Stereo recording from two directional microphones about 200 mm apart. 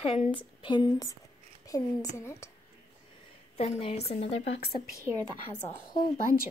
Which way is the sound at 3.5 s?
30° left (ahead or behind).